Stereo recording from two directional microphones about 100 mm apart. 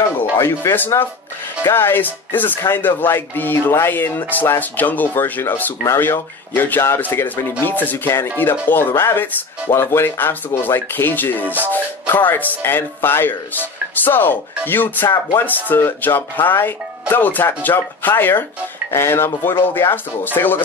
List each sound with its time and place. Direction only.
0.2 s speech: 25° left (ahead or behind)